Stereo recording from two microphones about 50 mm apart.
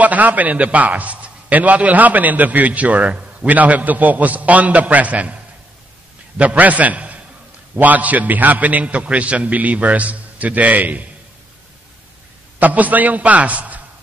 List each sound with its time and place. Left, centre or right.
0.0 s a man's voice: right
12.5 s a man's voice: right